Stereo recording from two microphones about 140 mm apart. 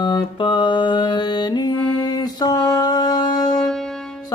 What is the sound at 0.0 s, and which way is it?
Music, 35° left (ahead or behind).